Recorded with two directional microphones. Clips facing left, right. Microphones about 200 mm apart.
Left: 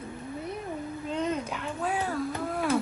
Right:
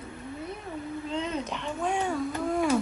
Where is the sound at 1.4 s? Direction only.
5° left (ahead or behind).